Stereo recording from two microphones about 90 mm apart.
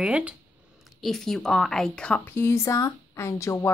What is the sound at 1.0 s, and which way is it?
A woman's voice, 5° left (ahead or behind).